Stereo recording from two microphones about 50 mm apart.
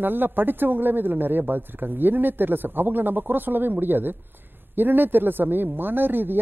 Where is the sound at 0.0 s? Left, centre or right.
Right.